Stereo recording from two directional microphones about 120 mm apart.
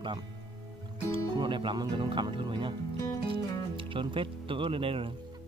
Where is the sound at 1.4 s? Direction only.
40° right (ahead or behind).